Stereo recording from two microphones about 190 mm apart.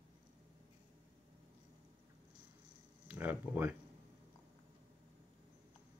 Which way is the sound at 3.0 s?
10° right (ahead or behind).